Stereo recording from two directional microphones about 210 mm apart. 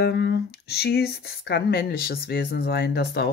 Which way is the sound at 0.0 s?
50° left (ahead or behind).